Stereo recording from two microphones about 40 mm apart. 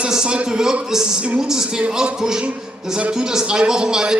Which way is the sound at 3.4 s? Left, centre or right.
Centre.